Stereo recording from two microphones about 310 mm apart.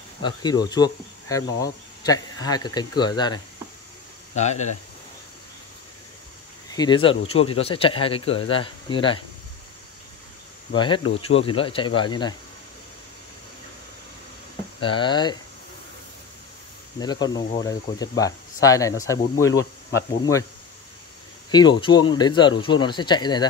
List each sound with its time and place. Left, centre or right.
0.2 s speech: centre
4.4 s speech: left
6.7 s speech: centre
10.7 s speech: centre
14.8 s speech: centre
17.0 s speech: centre
21.5 s speech: centre